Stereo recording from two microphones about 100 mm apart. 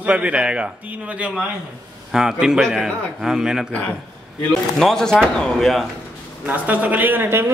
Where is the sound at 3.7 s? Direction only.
15° left (ahead or behind).